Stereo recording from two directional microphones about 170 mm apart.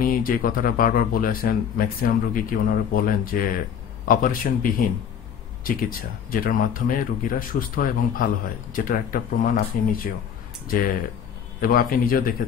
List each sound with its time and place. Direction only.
0.0 s speech: 55° left (ahead or behind)
11.6 s speech: 55° left (ahead or behind)